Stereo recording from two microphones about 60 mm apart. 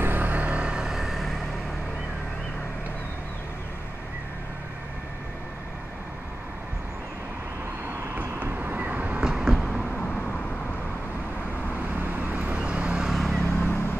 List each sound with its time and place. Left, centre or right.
0.0 s vehicle: right; by 1.3 s centre
8.1 s vehicle: right
9.2 s a sound: centre
12.0 s vehicle: right
12.5 s vehicle: centre
13.1 s vehicle: centre
13.6 s vehicle: left